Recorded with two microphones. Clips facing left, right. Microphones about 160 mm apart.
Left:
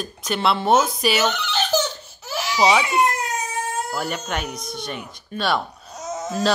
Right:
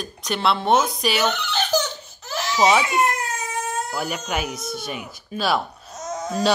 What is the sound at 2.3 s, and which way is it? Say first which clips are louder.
Baby cry: even; 10° left (ahead or behind).